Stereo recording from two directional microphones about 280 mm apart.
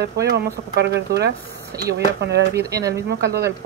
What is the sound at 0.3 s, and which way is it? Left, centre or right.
Speech, right.